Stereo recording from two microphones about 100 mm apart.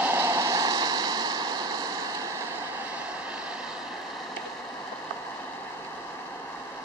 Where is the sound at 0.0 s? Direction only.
25° right (ahead or behind); by 1.5 s 45° right (ahead or behind).